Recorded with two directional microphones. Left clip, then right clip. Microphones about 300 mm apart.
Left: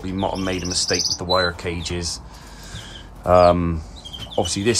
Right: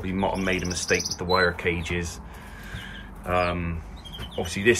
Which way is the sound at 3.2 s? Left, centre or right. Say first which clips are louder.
Left 11 dB; centre.